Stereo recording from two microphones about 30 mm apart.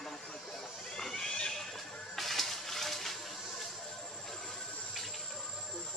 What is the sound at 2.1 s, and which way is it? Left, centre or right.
Music, centre.